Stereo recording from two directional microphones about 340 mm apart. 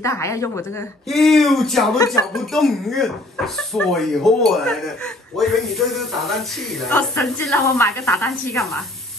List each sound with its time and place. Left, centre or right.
0.0 s speech: centre